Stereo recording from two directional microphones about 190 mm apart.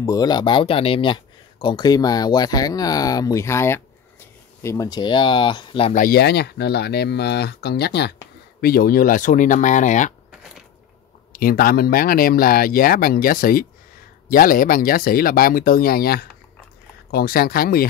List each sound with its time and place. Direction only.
0.0 s speech: 20° left (ahead or behind)
5.9 s speech: 50° left (ahead or behind)
11.3 s speech: 50° left (ahead or behind)